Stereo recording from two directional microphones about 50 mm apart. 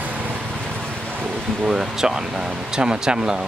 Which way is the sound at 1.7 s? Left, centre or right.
Centre.